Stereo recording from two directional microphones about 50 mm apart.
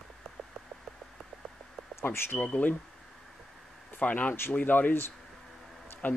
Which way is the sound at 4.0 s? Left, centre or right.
Left.